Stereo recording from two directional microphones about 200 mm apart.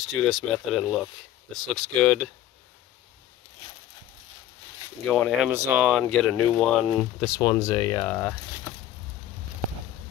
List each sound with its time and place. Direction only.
0.1 s speech: centre (ahead or behind)
5.0 s speech: centre (ahead or behind)
7.3 s speech: 15° left (ahead or behind)